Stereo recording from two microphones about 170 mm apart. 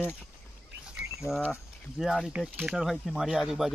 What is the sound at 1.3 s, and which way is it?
Speech, 5° right (ahead or behind).